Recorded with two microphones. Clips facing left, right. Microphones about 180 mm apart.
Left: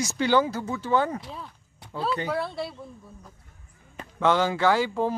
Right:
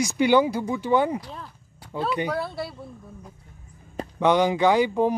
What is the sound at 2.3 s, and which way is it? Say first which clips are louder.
Speech: even; centre (ahead or behind).